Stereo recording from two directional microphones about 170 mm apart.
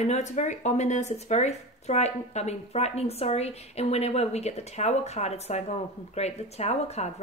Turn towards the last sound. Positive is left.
turn(degrees=40)  # may be behind; listen again after turning